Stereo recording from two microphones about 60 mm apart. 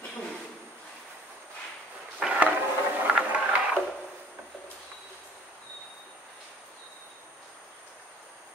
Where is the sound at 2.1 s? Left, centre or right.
Centre.